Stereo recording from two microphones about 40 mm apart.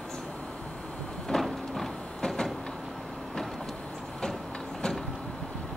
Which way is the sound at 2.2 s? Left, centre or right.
Centre.